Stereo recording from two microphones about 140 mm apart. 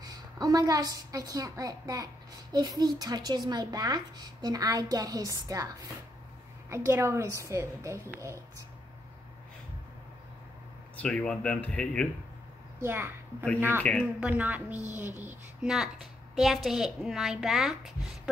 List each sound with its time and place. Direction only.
0.0 s a woman's voice: 25° right (ahead or behind)
6.7 s a woman's voice: 20° right (ahead or behind)
11.0 s speech: 10° left (ahead or behind)
12.8 s speech: 15° right (ahead or behind)
15.7 s a woman's voice: centre (ahead or behind)